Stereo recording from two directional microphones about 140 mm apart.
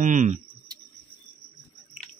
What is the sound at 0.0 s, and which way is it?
Cricket, 65° right (ahead or behind).